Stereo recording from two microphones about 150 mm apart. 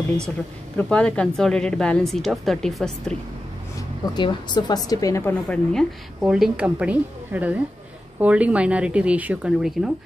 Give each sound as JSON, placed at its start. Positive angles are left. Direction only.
{"t": 0.7, "sound": "a woman's voice", "side_deg": 5}
{"t": 4.0, "sound": "a woman's voice", "side_deg": 30}
{"t": 5.5, "sound": "a woman's voice", "side_deg": 5}